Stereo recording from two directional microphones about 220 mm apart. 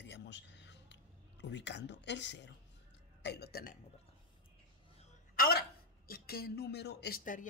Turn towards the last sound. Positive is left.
turn(degrees=40)  # may be behind; listen again after turning